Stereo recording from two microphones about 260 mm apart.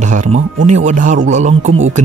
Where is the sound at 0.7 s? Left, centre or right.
Right.